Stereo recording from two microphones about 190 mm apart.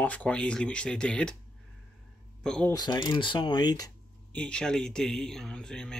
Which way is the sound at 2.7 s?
20° left (ahead or behind).